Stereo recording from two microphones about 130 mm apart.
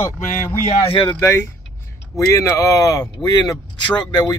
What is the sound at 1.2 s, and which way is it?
Speech, 20° left (ahead or behind).